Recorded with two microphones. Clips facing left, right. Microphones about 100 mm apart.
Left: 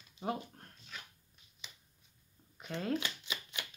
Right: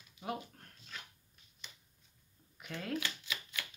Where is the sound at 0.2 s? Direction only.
30° left (ahead or behind).